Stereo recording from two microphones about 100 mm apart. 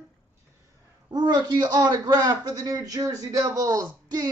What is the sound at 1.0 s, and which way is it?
Speech, 45° right (ahead or behind).